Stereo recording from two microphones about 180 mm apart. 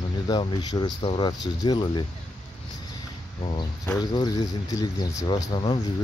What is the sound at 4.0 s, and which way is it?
Speech, 25° left (ahead or behind).